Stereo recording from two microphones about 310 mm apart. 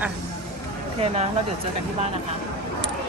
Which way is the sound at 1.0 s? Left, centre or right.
Right.